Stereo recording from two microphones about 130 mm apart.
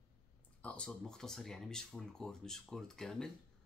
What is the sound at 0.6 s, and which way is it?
Speech, 5° left (ahead or behind).